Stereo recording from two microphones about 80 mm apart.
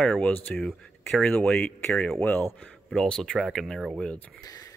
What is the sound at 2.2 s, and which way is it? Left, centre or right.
Speech, left.